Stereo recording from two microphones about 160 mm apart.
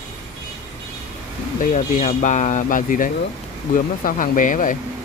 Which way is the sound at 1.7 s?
50° left (ahead or behind).